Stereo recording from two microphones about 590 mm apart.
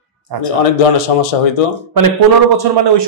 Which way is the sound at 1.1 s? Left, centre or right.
Left.